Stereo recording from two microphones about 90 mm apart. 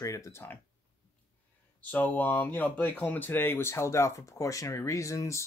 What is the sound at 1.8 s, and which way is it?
Speech, 20° left (ahead or behind).